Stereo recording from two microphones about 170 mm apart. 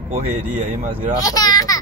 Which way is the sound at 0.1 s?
45° right (ahead or behind).